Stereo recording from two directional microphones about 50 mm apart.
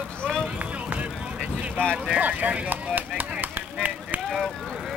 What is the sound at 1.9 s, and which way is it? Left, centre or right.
Vehicle, centre.